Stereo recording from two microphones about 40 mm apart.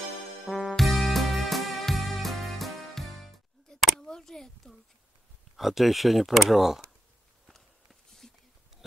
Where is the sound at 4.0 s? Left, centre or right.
Centre.